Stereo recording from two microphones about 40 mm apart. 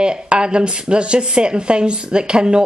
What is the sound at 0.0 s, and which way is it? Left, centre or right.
Speech, right.